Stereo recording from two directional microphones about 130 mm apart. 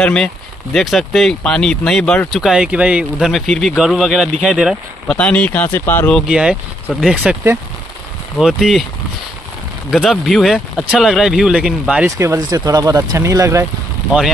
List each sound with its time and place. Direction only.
0.0 s speech: 5° left (ahead or behind)
2.4 s speech: 5° right (ahead or behind)
5.0 s speech: 10° left (ahead or behind)
6.1 s speech: 5° right (ahead or behind)
8.4 s speech: centre (ahead or behind)
9.9 s speech: 5° left (ahead or behind)
12.2 s speech: 25° right (ahead or behind)